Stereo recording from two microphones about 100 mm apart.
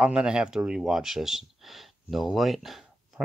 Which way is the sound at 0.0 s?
10° right (ahead or behind).